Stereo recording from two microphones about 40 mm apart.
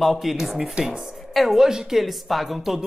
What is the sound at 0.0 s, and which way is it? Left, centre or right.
A woman's voice, centre.